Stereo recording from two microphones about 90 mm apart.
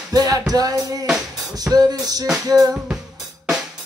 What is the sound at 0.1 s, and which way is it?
Music, 40° right (ahead or behind).